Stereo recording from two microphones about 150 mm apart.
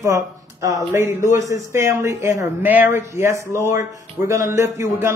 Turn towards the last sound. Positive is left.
turn(degrees=-20)  # may be behind; listen again after turning